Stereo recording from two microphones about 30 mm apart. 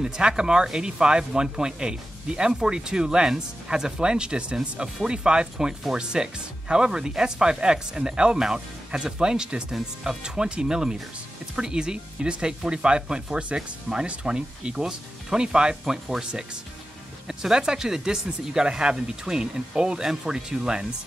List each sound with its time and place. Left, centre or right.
0.0 s speech: right
17.3 s speech: centre